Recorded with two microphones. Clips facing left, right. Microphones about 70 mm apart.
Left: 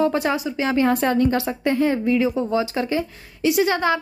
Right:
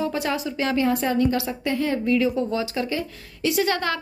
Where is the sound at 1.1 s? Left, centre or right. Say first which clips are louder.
Left 2 dB; left.